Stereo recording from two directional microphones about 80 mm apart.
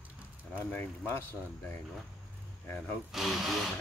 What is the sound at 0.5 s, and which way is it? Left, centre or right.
Speech, left.